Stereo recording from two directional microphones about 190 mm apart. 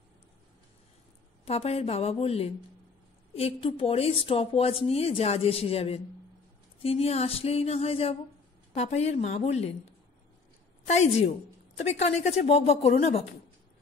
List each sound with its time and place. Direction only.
1.4 s speech: 30° left (ahead or behind)
11.0 s speech: 35° left (ahead or behind)